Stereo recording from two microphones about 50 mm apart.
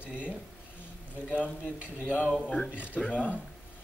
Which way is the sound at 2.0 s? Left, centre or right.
Right.